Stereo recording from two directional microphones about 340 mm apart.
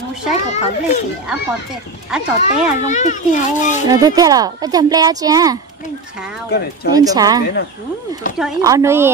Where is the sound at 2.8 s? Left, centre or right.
Left.